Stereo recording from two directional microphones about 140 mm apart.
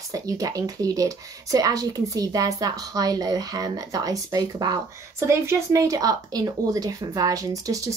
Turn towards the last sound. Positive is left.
turn(degrees=-25)  # may be behind; listen again after turning